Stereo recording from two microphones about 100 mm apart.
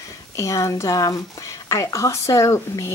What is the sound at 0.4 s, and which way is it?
Speech, 30° left (ahead or behind).